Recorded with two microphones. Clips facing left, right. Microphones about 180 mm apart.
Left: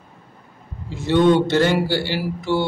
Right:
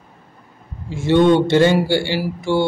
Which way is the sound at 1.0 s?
15° right (ahead or behind).